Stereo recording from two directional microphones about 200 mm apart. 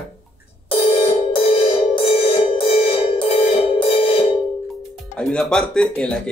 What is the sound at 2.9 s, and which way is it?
Music, 30° left (ahead or behind).